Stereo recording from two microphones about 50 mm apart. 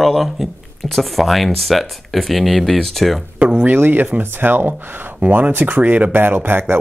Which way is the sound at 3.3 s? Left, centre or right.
Right.